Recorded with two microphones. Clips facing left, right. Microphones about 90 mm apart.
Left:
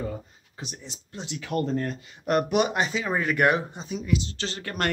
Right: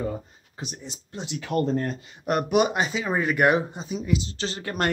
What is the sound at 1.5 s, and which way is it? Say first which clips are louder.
Speech: right 2 dB; 30° right (ahead or behind).